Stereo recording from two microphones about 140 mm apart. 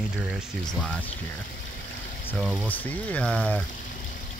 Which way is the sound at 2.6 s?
10° left (ahead or behind).